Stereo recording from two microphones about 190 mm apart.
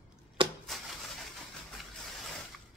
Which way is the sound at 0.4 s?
30° right (ahead or behind).